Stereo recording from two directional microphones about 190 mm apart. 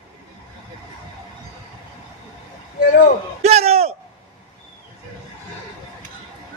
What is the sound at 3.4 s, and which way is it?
Speech, 35° right (ahead or behind).